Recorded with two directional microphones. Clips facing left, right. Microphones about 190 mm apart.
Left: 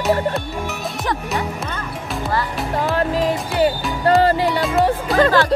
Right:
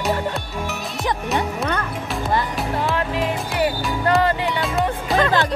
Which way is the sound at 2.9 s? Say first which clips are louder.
Left 4 dB; 35° left (ahead or behind).